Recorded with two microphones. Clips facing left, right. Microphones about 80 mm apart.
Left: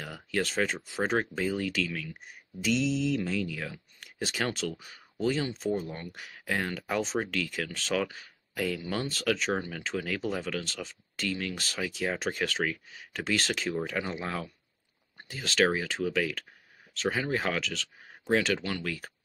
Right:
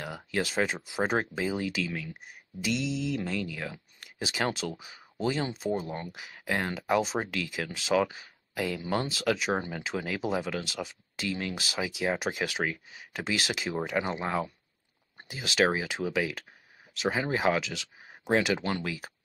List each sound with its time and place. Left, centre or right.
0.0 s speech: centre
4.0 s a sound: centre
4.6 s speech: centre
18.6 s speech: right
18.9 s speech: centre